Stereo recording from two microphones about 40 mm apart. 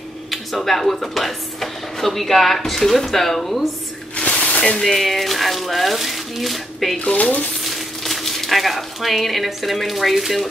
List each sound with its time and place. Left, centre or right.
0.3 s speech: centre
4.2 s a sound: left
4.9 s speech: centre
7.0 s speech: left
7.6 s speech: centre